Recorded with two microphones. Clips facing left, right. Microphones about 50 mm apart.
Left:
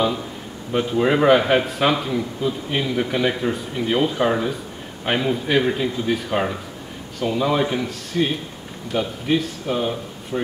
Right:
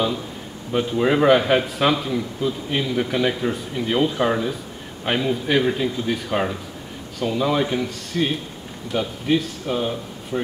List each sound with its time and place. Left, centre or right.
0.7 s a man's voice: centre